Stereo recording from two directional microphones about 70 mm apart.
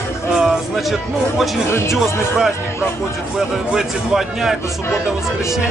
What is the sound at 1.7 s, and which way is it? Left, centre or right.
Speech, left.